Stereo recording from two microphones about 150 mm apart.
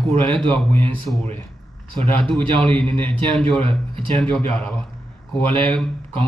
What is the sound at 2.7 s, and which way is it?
A man's voice, 5° left (ahead or behind).